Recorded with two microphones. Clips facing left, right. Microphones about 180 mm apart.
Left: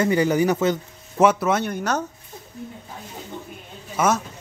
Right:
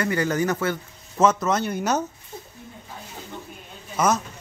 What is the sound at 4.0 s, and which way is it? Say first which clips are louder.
Speech: left 1 dB; 5° left (ahead or behind).